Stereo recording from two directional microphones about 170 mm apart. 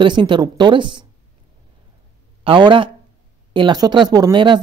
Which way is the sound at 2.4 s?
30° right (ahead or behind).